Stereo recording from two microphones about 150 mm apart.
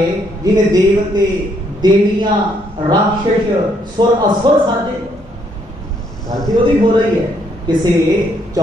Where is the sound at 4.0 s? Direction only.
30° right (ahead or behind).